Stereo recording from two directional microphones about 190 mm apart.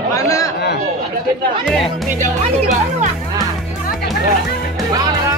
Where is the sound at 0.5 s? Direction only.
60° left (ahead or behind).